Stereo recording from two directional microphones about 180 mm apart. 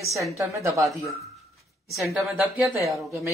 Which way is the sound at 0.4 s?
15° right (ahead or behind).